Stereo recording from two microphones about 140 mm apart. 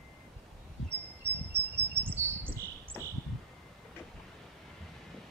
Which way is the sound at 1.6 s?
10° left (ahead or behind).